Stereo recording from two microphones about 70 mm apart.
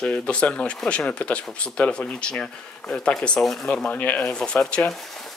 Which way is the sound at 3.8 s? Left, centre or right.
Left.